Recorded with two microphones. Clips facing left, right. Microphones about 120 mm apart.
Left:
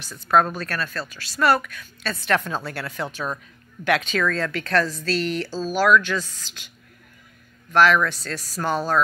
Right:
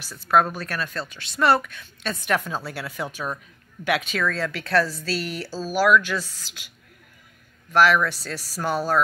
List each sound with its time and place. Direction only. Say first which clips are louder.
0.0 s speech: left 1 dB; 5° right (ahead or behind); by 2.1 s 25° right (ahead or behind)
2.2 s speech: left 2 dB; 10° right (ahead or behind)
7.7 s speech: left 1 dB; 5° right (ahead or behind)